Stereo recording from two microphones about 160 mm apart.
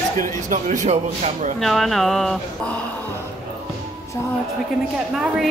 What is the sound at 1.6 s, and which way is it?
Speech, centre (ahead or behind).